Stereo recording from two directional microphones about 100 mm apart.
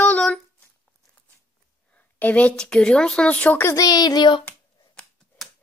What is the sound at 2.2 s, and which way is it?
Speech, 15° left (ahead or behind).